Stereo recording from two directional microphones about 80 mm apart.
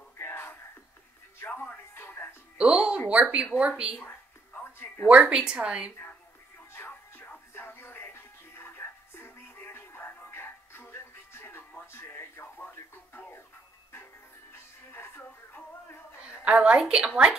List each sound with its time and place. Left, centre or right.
0.2 s music: left
2.6 s music: centre
3.1 s a woman's voice: centre
5.0 s a woman's voice: centre
6.7 s music: left
11.8 s radio: left
14.5 s music: left
16.4 s a woman's voice: centre